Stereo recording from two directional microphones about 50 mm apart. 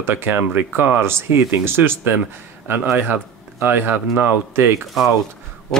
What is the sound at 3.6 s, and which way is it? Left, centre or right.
Speech, right.